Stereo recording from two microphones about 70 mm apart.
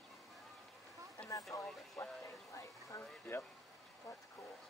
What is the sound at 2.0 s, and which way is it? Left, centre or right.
Speech, left.